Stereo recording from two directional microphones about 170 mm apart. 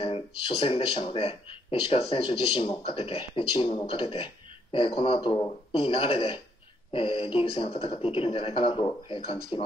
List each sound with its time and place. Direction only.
0.0 s speech: 35° left (ahead or behind)